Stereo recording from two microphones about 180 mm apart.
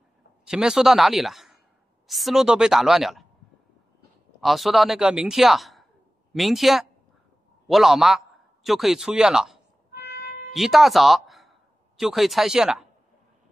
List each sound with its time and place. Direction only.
0.5 s speech: 5° right (ahead or behind)
4.4 s speech: centre (ahead or behind)
9.9 s music: 65° left (ahead or behind)
10.5 s speech: centre (ahead or behind)